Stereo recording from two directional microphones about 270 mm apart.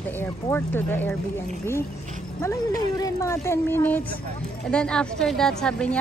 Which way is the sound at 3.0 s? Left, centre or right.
Centre.